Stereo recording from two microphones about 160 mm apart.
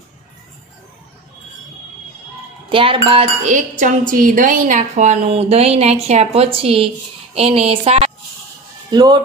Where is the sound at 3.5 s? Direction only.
50° right (ahead or behind).